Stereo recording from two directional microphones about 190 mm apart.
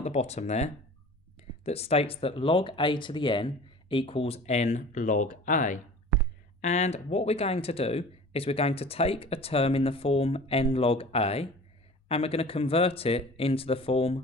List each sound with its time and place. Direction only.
0.0 s speech: 35° left (ahead or behind)